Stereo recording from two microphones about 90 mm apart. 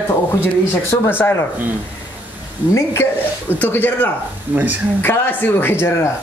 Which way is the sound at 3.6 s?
20° left (ahead or behind).